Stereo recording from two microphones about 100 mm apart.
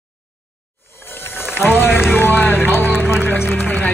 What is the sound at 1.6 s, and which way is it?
Vehicle, 25° left (ahead or behind).